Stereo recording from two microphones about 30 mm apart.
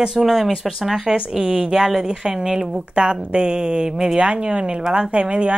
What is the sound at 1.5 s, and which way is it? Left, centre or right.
A woman's voice, right.